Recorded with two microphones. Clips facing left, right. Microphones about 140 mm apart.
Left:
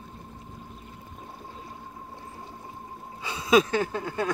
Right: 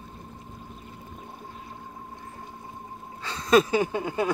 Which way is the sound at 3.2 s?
10° left (ahead or behind).